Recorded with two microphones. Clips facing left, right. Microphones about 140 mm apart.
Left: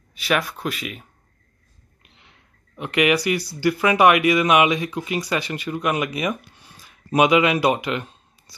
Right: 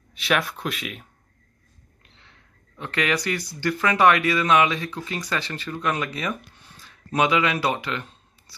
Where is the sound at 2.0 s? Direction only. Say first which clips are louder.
Left 2 dB; 15° left (ahead or behind).